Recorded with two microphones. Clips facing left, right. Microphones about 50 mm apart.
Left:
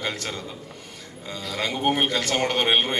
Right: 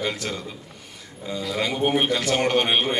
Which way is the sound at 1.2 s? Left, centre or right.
Centre.